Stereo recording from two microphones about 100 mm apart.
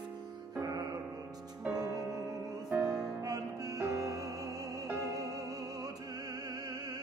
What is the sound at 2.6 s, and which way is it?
Music, 10° right (ahead or behind).